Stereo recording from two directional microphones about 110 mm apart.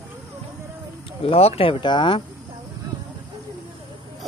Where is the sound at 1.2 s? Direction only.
65° left (ahead or behind); by 2.2 s 45° left (ahead or behind).